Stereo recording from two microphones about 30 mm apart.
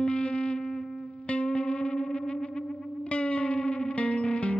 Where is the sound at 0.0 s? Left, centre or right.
Left.